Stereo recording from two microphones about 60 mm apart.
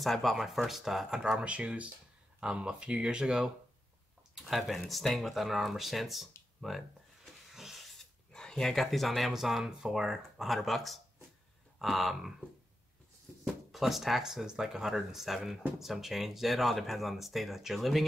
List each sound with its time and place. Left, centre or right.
0.0 s speech: centre
1.4 s speech: centre
13.4 s speech: centre